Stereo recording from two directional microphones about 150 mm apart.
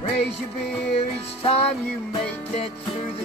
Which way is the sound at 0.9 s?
40° left (ahead or behind).